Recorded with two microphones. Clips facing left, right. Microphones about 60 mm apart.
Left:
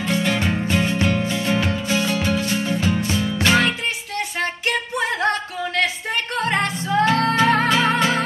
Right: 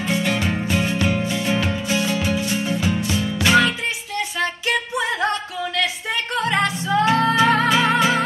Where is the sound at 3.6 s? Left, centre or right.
Left.